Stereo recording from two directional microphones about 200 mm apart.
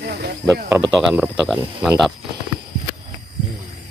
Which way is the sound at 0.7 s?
5° right (ahead or behind).